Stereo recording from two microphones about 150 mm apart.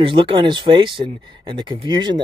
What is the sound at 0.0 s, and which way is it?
Speech, 35° right (ahead or behind).